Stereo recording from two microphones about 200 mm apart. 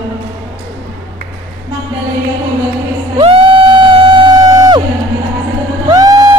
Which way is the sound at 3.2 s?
25° right (ahead or behind).